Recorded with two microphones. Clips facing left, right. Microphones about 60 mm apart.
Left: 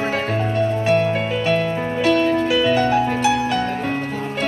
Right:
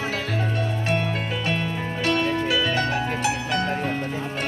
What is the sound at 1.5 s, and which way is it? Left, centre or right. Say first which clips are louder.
Music: left 7 dB; left.